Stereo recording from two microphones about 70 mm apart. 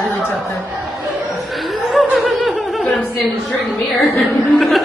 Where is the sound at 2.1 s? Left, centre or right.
Centre.